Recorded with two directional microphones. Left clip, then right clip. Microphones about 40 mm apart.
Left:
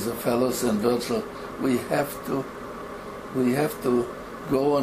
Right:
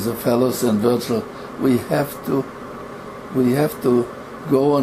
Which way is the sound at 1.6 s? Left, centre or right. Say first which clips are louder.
Right 5 dB; right.